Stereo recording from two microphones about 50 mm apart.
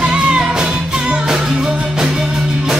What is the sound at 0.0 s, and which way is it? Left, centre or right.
Music, centre.